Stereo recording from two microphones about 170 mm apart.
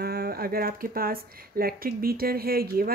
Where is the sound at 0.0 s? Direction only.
65° right (ahead or behind).